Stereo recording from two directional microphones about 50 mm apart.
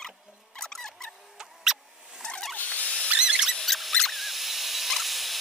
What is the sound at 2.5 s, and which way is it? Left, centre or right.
Rodents, left.